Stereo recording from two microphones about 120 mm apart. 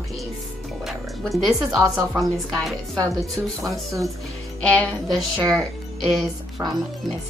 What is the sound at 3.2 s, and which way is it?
Speech, 25° right (ahead or behind).